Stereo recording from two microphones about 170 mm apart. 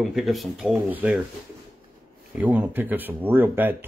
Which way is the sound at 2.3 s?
10° right (ahead or behind).